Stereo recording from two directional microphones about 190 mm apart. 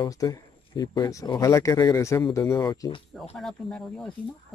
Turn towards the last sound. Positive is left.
turn(degrees=5)  # may be behind; listen again after turning